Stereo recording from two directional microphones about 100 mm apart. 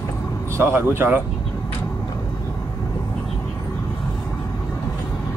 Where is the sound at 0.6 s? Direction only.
25° right (ahead or behind).